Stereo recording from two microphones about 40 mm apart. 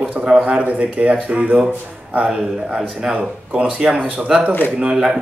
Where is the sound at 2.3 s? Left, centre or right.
Centre.